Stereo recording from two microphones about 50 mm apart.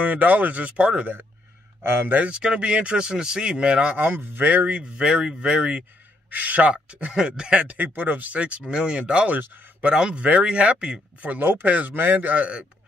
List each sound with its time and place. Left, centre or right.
0.0 s speech: right
1.8 s speech: right
2.1 s speech: right
4.0 s speech: right
4.5 s speech: right
4.9 s speech: centre
6.3 s speech: right
7.1 s speech: centre; by 12.5 s right